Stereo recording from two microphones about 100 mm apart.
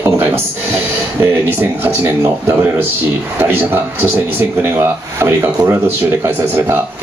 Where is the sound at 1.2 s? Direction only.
25° right (ahead or behind).